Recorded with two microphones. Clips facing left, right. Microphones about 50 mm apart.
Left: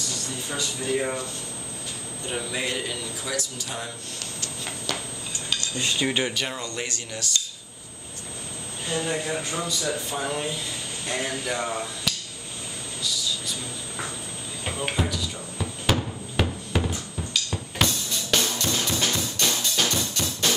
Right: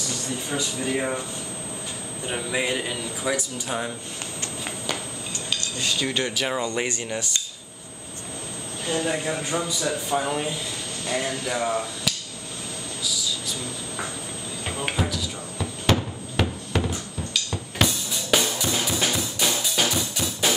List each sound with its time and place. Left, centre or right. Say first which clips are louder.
0.5 s a man's voice: even; centre
2.2 s a man's voice: right 3 dB; centre
5.8 s cutlery: left 1 dB; centre
6.5 s speech: right 6 dB; right
8.9 s a man's voice: right 1 dB; centre
11.1 s speech: right 2 dB; centre
13.0 s a sound: even; centre